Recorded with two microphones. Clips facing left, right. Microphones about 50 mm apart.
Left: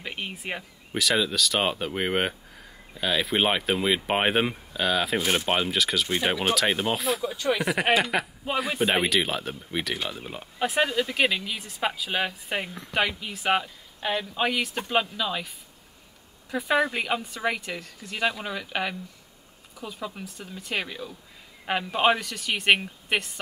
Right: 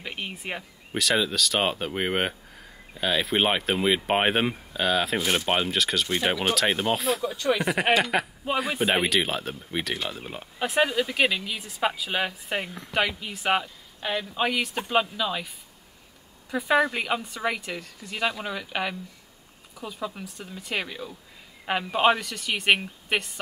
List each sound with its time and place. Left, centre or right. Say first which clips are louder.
0.0 s speech: even; centre